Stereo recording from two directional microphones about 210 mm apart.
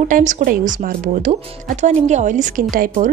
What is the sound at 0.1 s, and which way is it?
A woman's voice, 35° right (ahead or behind).